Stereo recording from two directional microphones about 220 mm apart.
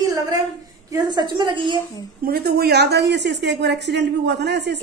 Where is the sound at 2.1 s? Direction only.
45° right (ahead or behind).